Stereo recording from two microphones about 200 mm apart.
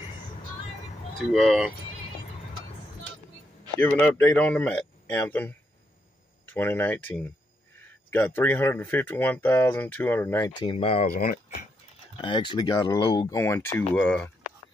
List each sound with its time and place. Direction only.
1.1 s speech: centre (ahead or behind)
3.8 s speech: 10° left (ahead or behind)
8.1 s speech: 10° left (ahead or behind)
10.6 s speech: 30° left (ahead or behind)
12.2 s speech: 25° left (ahead or behind); by 14.3 s 5° left (ahead or behind)